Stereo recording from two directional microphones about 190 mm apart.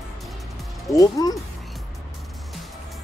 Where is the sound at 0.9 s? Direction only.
20° left (ahead or behind).